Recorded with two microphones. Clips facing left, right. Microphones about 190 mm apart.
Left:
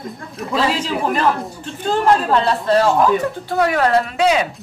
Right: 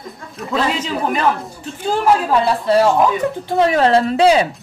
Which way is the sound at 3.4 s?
25° right (ahead or behind).